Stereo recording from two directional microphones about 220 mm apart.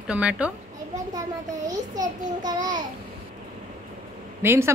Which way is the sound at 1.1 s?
15° right (ahead or behind).